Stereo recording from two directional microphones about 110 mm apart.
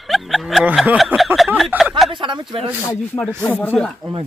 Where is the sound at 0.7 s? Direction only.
10° right (ahead or behind).